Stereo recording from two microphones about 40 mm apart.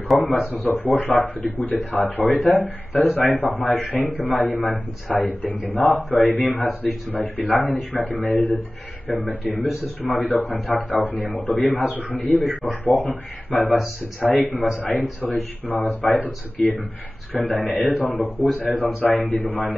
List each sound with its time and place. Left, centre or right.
0.1 s speech: centre
0.7 s a man's voice: left